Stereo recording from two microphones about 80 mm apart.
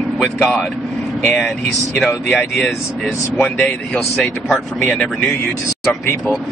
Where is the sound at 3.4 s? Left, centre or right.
Centre.